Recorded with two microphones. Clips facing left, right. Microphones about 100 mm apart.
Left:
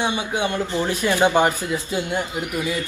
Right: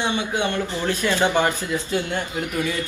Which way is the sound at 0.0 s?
15° left (ahead or behind).